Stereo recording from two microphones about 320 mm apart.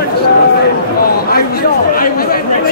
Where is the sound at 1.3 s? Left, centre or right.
Left.